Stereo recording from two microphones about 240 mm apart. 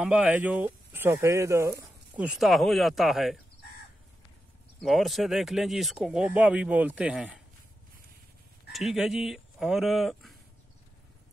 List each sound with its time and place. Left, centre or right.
0.0 s speech: centre
4.8 s speech: centre
8.7 s speech: centre